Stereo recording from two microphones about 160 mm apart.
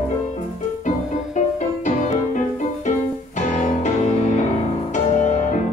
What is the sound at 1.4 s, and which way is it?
Music, 50° left (ahead or behind).